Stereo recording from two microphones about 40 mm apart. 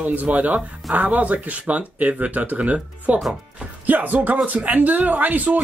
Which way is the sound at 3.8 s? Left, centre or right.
Right.